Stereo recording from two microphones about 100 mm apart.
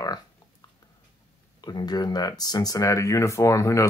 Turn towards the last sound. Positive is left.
turn(degrees=30)  # may be behind; listen again after turning